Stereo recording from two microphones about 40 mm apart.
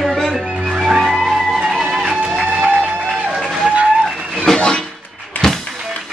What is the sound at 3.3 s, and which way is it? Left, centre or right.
Run, centre.